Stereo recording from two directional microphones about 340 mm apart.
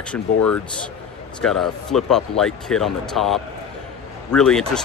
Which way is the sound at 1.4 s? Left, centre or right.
Centre.